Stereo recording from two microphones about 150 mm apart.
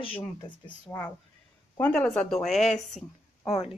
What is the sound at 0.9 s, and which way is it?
Speech, 15° left (ahead or behind).